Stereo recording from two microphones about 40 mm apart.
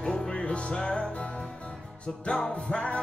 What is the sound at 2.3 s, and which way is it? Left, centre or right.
Music, left.